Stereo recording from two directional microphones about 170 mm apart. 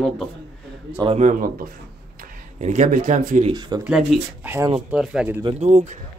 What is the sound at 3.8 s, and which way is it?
Speech, 5° right (ahead or behind).